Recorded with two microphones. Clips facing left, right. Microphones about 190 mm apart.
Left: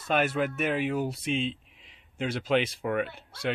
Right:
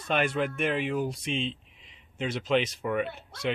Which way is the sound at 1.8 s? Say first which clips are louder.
Right 1 dB; 55° left (ahead or behind).